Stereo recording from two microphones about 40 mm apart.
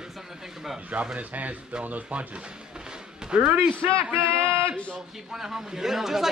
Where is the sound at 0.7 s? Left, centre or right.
Right; by 3.4 s centre.